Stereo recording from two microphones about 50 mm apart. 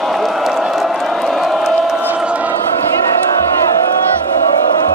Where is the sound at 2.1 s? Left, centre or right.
Right.